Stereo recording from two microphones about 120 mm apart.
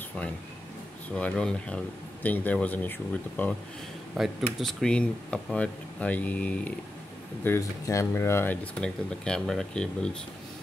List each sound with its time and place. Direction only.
1.1 s speech: 10° left (ahead or behind)
4.2 s speech: centre (ahead or behind)
7.4 s speech: 25° left (ahead or behind); by 9.8 s 5° left (ahead or behind)